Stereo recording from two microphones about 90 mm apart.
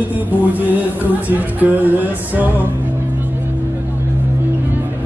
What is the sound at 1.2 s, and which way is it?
Music, 20° right (ahead or behind).